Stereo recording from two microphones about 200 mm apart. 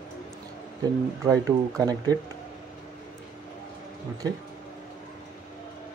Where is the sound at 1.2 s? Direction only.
15° right (ahead or behind).